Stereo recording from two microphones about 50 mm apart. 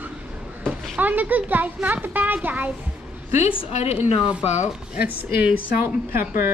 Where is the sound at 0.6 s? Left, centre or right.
Right.